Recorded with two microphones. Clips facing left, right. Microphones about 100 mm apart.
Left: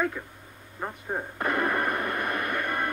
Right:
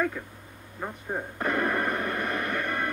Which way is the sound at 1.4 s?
15° left (ahead or behind).